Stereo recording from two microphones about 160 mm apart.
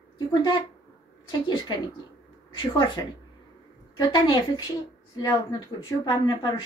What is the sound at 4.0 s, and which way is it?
Speech, 25° left (ahead or behind).